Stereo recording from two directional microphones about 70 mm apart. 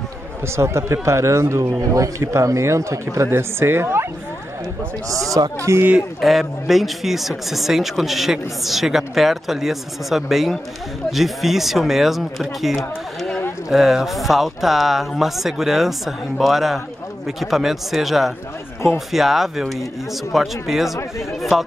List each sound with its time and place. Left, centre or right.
0.6 s speech: right
5.6 s speech: right
6.2 s speech: centre